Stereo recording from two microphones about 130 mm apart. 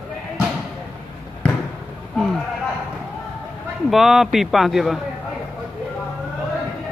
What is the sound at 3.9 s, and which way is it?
A man's voice, centre (ahead or behind).